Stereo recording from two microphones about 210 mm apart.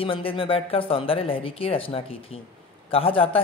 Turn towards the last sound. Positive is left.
turn(degrees=25)  # may be behind; listen again after turning